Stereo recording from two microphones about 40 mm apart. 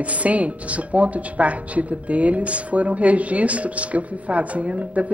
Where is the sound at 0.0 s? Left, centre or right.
Right.